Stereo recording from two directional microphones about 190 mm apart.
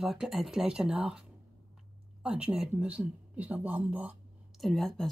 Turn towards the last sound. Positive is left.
turn(degrees=0)  # may be behind; listen again after turning